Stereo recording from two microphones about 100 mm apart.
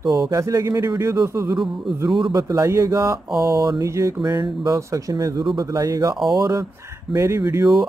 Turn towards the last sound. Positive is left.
turn(degrees=-30)  # may be behind; listen again after turning